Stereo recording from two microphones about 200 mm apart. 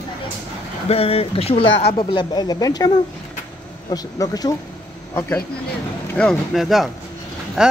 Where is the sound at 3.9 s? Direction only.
20° left (ahead or behind).